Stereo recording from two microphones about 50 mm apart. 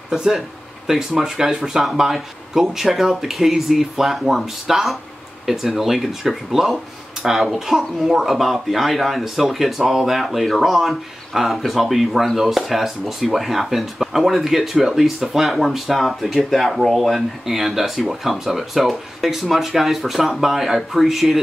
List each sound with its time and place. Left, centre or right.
0.1 s speech: centre